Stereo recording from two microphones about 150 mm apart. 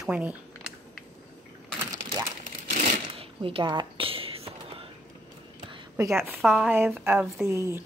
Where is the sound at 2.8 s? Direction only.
40° right (ahead or behind).